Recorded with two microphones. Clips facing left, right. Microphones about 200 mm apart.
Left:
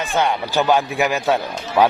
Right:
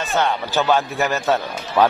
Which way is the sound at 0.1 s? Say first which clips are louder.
Even; 15° left (ahead or behind).